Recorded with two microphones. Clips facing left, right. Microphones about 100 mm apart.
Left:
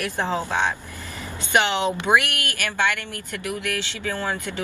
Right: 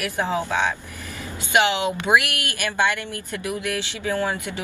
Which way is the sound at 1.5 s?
15° right (ahead or behind).